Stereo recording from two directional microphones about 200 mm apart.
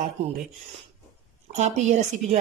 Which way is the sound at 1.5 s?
35° right (ahead or behind).